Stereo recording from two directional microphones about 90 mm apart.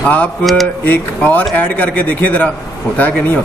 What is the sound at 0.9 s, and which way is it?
A man's voice, 20° left (ahead or behind).